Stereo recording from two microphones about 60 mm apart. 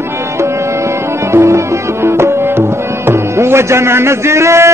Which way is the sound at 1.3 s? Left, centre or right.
Right.